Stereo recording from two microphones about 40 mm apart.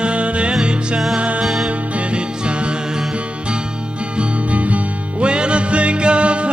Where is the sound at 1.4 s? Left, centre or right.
Centre.